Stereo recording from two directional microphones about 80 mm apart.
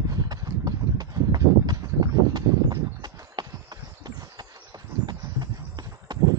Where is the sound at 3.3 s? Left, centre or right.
Right.